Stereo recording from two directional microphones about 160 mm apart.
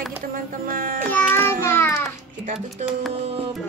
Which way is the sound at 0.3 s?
65° right (ahead or behind).